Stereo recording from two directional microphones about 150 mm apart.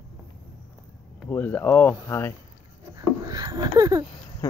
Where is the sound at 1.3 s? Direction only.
15° left (ahead or behind).